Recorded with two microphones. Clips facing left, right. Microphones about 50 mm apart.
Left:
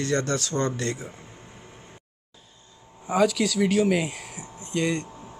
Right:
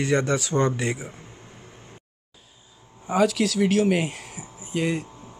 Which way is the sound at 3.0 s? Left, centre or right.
Centre.